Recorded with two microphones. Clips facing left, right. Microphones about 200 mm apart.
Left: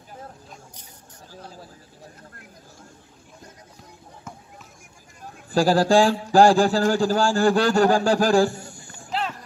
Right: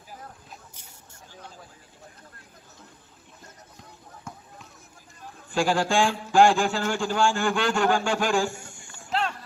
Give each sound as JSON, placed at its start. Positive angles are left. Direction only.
{"t": 1.3, "sound": "vehicle", "side_deg": 35}
{"t": 5.5, "sound": "a man's voice", "side_deg": 35}
{"t": 9.1, "sound": "clip-clop", "side_deg": 0}